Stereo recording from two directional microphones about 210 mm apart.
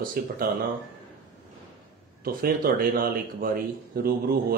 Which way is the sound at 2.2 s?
45° right (ahead or behind).